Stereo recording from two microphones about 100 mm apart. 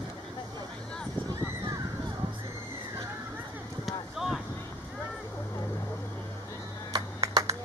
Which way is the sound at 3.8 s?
Centre (ahead or behind).